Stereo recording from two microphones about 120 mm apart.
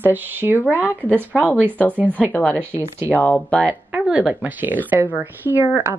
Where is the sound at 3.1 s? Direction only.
15° left (ahead or behind).